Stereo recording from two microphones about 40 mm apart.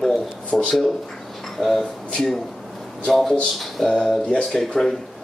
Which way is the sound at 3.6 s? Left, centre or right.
Centre.